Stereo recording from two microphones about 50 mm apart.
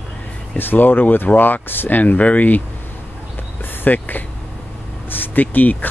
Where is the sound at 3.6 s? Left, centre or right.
Left.